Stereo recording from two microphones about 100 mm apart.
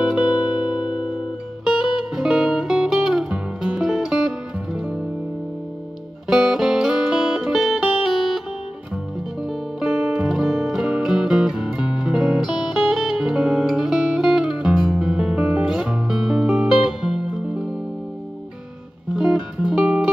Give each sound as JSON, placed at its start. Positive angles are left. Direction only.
{"t": 0.0, "sound": "music", "side_deg": -10}
{"t": 6.2, "sound": "music", "side_deg": -5}
{"t": 9.4, "sound": "music", "side_deg": -5}
{"t": 19.1, "sound": "music", "side_deg": -5}